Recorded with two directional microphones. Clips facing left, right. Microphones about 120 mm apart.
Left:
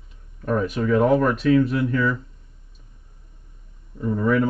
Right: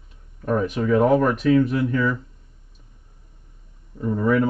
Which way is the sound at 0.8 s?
30° right (ahead or behind).